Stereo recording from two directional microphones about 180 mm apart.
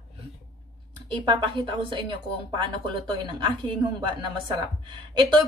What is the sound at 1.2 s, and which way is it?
Speech, 25° right (ahead or behind).